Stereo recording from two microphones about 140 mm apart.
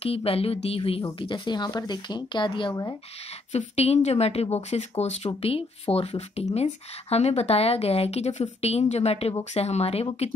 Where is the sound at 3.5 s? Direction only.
50° left (ahead or behind).